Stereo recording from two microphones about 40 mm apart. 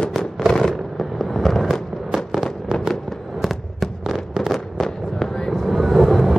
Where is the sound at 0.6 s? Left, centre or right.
Centre.